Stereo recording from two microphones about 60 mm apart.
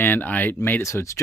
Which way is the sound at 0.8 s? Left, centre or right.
Left.